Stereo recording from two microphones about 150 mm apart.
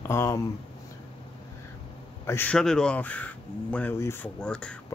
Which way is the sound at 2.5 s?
5° left (ahead or behind).